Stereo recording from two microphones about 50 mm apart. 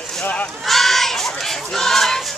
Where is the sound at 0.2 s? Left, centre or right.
Left.